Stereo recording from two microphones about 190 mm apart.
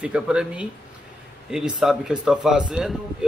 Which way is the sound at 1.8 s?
Centre (ahead or behind).